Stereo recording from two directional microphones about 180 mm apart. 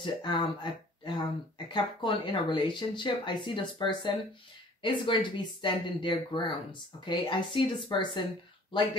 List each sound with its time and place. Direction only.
0.0 s speech: 25° left (ahead or behind)